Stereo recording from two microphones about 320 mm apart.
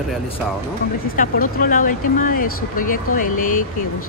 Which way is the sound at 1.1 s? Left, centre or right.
Left.